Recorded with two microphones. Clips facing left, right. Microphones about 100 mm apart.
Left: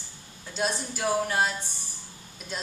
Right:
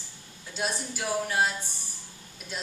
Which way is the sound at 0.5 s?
5° right (ahead or behind).